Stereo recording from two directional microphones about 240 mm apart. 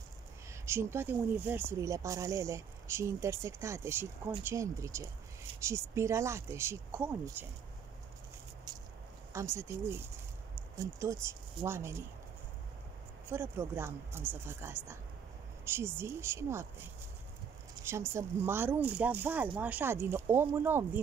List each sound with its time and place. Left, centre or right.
0.5 s speech: centre
8.7 s a sound: centre
9.3 s speech: centre
13.3 s speech: centre
17.8 s speech: centre